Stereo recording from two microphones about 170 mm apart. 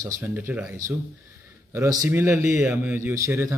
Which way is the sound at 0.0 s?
15° right (ahead or behind).